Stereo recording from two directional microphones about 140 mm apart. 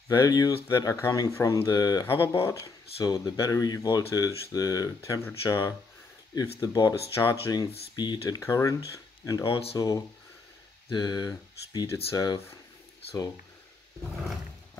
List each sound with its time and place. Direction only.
0.1 s speech: 25° left (ahead or behind); by 9.8 s 40° left (ahead or behind)
9.8 s speech: 25° left (ahead or behind)